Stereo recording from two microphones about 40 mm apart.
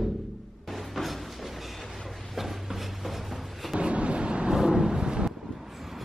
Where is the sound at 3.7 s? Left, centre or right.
Right.